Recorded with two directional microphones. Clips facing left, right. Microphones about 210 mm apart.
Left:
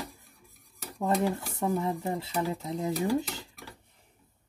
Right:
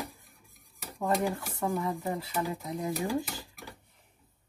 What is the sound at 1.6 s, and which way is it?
Speech, 25° left (ahead or behind).